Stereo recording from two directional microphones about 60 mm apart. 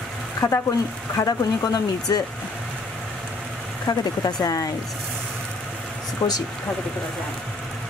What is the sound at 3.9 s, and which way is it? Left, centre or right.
Speech, left.